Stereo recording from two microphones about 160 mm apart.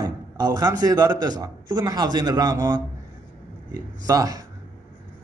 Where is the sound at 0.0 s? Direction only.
25° right (ahead or behind).